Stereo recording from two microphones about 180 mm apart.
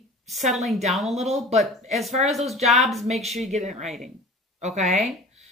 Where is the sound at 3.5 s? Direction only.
40° right (ahead or behind).